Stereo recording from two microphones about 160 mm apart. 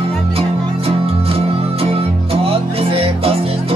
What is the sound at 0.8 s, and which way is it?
Music, 35° right (ahead or behind).